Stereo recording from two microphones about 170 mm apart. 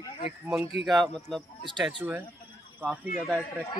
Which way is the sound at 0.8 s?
Centre (ahead or behind).